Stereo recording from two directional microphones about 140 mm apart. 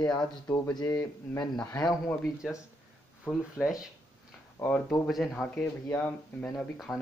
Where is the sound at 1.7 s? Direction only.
25° left (ahead or behind).